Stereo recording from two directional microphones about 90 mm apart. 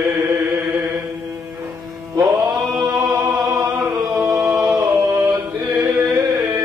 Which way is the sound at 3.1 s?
35° right (ahead or behind).